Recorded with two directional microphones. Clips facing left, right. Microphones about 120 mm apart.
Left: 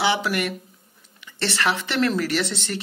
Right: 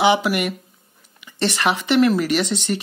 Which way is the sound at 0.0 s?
15° right (ahead or behind).